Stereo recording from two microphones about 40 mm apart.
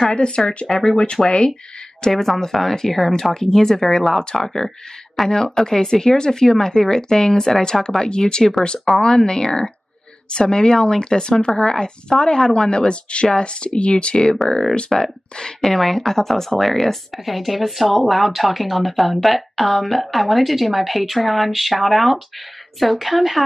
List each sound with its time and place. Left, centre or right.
0.7 s speech: centre
0.9 s speech: centre
4.6 s speech: centre
5.3 s speech: centre
14.3 s speech: centre
14.9 s speech: centre